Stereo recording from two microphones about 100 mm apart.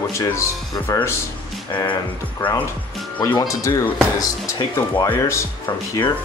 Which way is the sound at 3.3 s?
35° left (ahead or behind).